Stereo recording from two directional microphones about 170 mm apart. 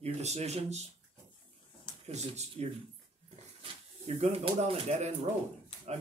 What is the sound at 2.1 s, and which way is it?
Speech, 40° right (ahead or behind).